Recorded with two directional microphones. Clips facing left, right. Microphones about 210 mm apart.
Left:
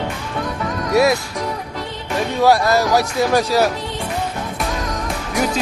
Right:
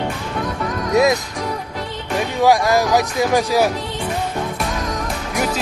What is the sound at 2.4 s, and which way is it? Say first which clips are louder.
Speech: even; 15° right (ahead or behind).